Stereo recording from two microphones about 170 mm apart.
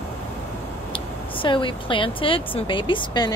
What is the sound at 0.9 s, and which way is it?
Speech, 30° left (ahead or behind).